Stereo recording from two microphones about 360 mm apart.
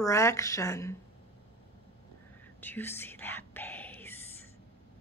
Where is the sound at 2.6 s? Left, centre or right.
Centre.